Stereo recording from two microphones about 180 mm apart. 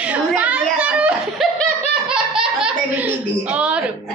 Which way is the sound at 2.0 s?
5° right (ahead or behind).